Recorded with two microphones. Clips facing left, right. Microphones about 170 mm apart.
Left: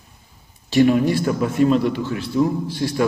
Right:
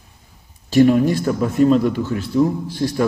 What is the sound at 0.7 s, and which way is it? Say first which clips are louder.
A man's voice: right 2 dB; 40° right (ahead or behind).